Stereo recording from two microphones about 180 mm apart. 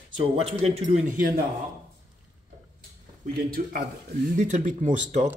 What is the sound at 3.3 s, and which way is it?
Speech, 55° right (ahead or behind).